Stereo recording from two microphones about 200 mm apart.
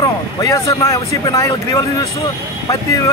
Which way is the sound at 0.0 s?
15° left (ahead or behind).